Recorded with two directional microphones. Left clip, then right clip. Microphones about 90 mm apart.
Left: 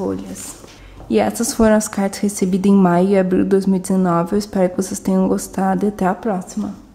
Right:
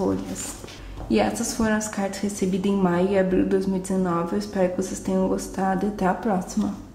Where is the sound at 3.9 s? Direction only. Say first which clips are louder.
Left 7 dB; 55° left (ahead or behind).